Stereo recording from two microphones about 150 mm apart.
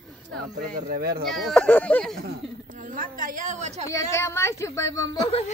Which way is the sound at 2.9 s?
65° right (ahead or behind).